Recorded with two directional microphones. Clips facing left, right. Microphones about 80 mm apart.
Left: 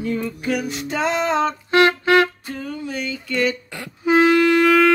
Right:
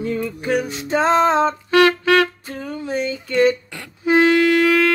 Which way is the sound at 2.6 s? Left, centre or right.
Right.